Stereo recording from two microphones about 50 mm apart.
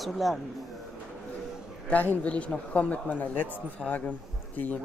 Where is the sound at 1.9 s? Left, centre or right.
Left.